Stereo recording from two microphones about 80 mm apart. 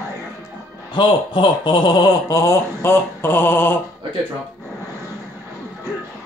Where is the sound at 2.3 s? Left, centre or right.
Left.